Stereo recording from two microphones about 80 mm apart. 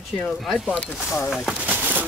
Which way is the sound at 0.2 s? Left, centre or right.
Centre.